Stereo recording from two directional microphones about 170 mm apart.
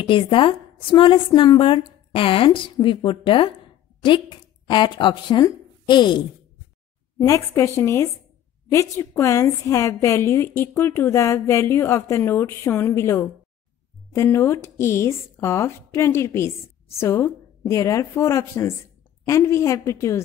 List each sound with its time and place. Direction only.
0.0 s a woman's voice: 30° left (ahead or behind)
7.2 s a woman's voice: 15° left (ahead or behind)